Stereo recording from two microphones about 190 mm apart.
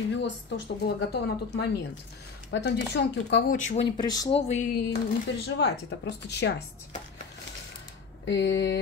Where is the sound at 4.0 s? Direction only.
20° left (ahead or behind).